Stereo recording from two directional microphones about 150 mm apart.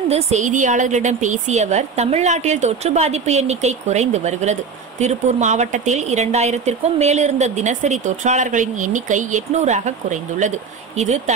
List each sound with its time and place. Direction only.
0.1 s a woman's voice: 50° right (ahead or behind)